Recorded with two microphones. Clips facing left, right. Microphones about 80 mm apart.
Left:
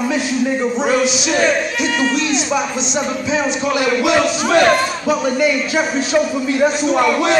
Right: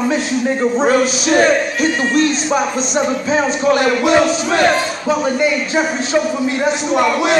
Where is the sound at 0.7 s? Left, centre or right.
Right.